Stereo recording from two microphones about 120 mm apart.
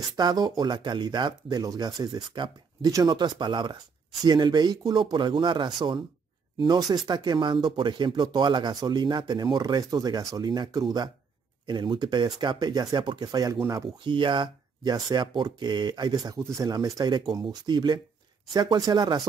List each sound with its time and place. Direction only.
0.1 s speech: 35° right (ahead or behind)
14.0 s speech: 45° right (ahead or behind)